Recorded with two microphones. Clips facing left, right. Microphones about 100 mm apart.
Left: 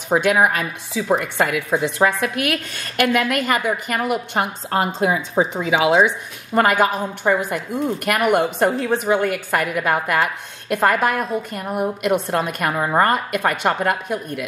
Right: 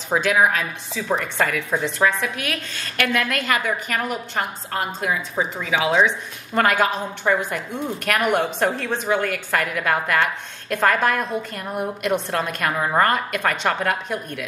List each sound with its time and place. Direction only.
0.3 s a woman's voice: 10° left (ahead or behind)
4.3 s a woman's voice: 20° left (ahead or behind)